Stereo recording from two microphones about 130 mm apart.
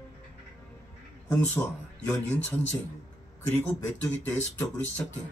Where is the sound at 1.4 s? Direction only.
15° left (ahead or behind).